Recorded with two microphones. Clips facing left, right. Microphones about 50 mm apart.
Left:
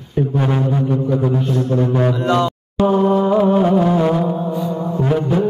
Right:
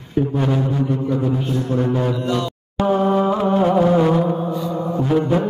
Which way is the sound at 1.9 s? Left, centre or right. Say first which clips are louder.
Left 4 dB; left.